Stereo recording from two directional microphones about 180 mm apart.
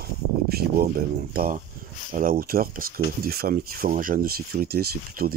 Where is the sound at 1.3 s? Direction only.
50° right (ahead or behind).